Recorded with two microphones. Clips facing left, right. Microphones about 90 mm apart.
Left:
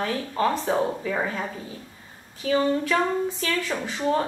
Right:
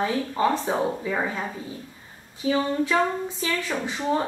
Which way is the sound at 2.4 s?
15° right (ahead or behind).